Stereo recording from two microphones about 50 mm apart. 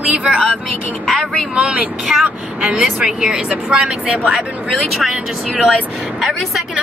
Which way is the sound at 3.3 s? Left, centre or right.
Right.